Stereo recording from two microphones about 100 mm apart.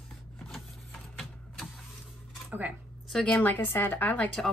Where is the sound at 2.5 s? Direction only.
15° right (ahead or behind).